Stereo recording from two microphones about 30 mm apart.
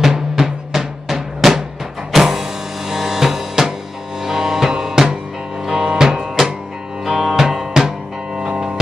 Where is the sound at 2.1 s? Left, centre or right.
Centre.